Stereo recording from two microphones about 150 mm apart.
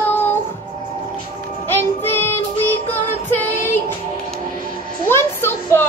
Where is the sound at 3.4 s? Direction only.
15° left (ahead or behind).